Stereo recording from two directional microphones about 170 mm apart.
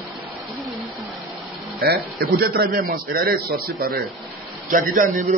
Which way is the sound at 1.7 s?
65° right (ahead or behind).